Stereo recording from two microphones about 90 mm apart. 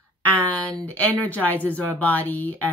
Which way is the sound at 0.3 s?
15° left (ahead or behind).